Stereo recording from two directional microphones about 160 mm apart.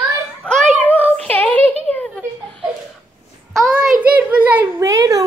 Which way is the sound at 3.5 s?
Centre (ahead or behind).